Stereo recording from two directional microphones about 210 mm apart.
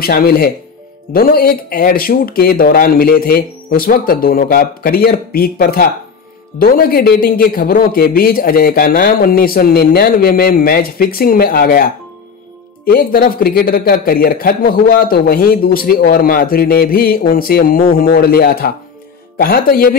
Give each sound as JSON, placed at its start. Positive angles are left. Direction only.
{"t": 0.0, "sound": "speech", "side_deg": 45}